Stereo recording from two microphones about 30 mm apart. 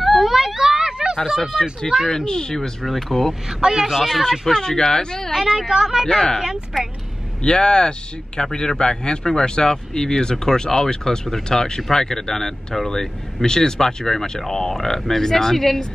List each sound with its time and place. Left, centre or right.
0.0 s a sound: centre
0.6 s a sound: right
1.4 s speech: centre
2.2 s speech: left
2.8 s speech: centre
3.4 s speech: centre
4.0 s speech: centre
4.6 s speech: left
5.3 s speech: centre
5.7 s speech: centre
7.4 s speech: left; by 15.8 s centre